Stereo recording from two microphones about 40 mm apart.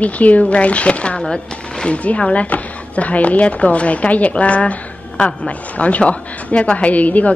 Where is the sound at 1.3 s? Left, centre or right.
Left.